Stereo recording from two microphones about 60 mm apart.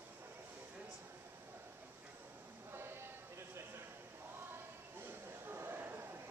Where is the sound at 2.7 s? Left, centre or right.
Right.